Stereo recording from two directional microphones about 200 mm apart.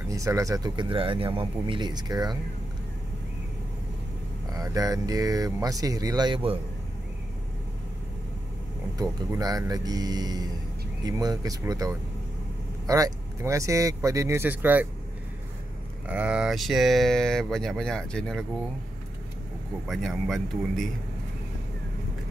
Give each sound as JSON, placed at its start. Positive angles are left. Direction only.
{"t": 0.1, "sound": "speech", "side_deg": -15}
{"t": 4.6, "sound": "speech", "side_deg": -15}
{"t": 8.9, "sound": "speech", "side_deg": -20}
{"t": 16.1, "sound": "speech", "side_deg": -5}
{"t": 19.9, "sound": "speech", "side_deg": 0}